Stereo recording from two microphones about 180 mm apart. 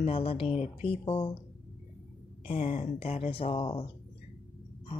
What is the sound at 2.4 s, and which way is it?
Speech, 45° left (ahead or behind).